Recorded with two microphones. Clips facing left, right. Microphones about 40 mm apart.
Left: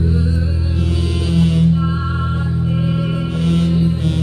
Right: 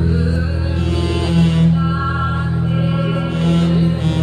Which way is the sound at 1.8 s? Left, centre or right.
Centre.